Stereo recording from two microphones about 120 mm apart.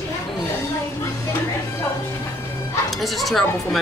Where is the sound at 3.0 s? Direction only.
Centre (ahead or behind).